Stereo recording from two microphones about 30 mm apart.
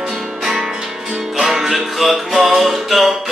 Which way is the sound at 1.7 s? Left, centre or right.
Centre.